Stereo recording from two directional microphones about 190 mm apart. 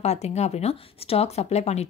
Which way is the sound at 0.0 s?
35° left (ahead or behind).